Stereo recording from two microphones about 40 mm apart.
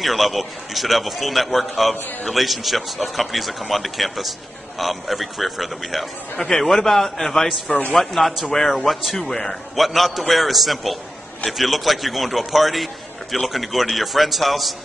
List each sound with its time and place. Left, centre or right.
0.0 s a man's voice: centre
9.2 s a man's voice: centre
9.8 s a man's voice: centre